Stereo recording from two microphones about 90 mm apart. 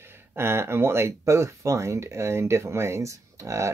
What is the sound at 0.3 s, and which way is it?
Speech, 25° right (ahead or behind).